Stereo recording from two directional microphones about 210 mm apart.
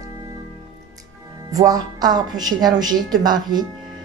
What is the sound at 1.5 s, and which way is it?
A woman's voice, 15° right (ahead or behind).